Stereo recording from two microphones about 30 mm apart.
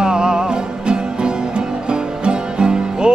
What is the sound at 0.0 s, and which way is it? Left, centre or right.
Music, right.